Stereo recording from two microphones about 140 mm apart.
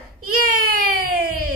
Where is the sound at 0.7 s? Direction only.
90° right.